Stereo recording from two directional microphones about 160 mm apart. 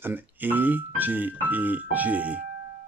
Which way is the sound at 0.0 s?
10° right (ahead or behind).